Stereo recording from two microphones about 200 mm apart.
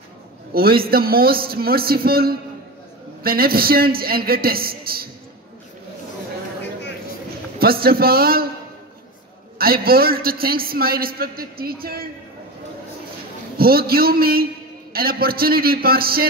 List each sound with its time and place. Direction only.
0.5 s a man's voice: 50° right (ahead or behind)
7.5 s a man's voice: 50° right (ahead or behind)
9.6 s a man's voice: 50° right (ahead or behind)
13.6 s a man's voice: 50° right (ahead or behind)